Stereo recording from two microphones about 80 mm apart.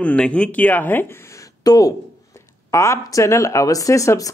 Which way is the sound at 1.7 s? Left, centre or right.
Left.